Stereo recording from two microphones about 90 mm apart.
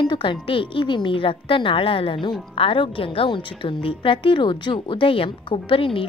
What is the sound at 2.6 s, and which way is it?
A woman's voice, 90° left.